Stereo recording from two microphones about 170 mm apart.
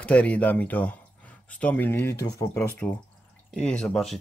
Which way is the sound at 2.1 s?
75° left (ahead or behind).